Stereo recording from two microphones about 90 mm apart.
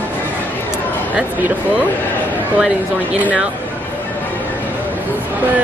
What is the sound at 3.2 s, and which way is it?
Speech, 10° right (ahead or behind).